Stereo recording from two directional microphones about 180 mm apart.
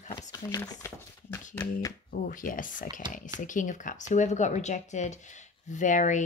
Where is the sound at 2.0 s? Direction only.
50° left (ahead or behind).